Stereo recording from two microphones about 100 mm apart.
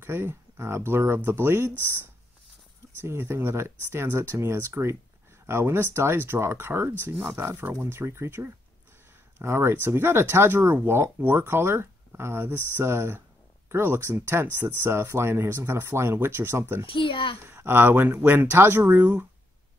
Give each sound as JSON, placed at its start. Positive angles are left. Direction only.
{"t": 0.0, "sound": "speech", "side_deg": -25}
{"t": 3.1, "sound": "speech", "side_deg": -20}
{"t": 16.8, "sound": "a child's voice", "side_deg": 60}
{"t": 17.5, "sound": "speech", "side_deg": -20}